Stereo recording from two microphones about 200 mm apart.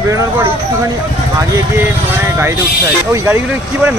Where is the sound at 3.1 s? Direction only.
10° right (ahead or behind).